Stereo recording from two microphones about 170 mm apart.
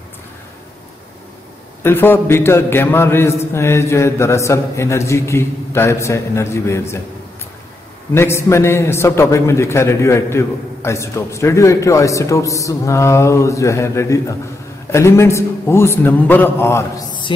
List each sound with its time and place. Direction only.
1.8 s a man's voice: 15° left (ahead or behind)
8.1 s a man's voice: 15° left (ahead or behind)